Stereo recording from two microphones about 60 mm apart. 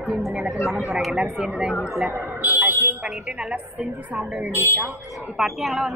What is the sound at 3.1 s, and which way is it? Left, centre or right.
A woman's voice, centre.